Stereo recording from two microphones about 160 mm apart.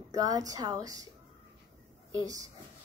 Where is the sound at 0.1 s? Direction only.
20° right (ahead or behind).